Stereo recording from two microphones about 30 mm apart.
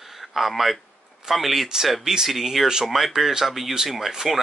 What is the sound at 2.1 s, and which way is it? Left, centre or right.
Speech, centre.